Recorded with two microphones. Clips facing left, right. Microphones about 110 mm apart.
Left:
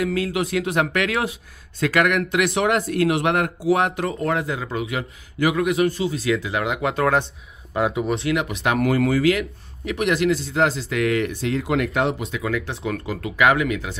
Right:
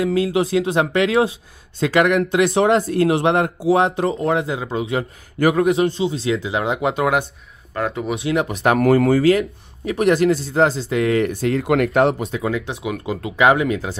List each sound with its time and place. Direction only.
0.0 s speech: 25° right (ahead or behind)
7.7 s speech: 5° left (ahead or behind)
8.2 s speech: 30° right (ahead or behind); by 12.2 s 50° right (ahead or behind)
12.2 s speech: 30° right (ahead or behind)